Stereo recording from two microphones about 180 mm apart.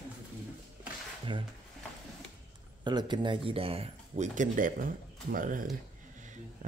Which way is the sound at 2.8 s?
25° right (ahead or behind).